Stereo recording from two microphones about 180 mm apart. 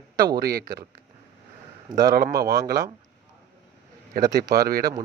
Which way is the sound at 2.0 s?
55° right (ahead or behind).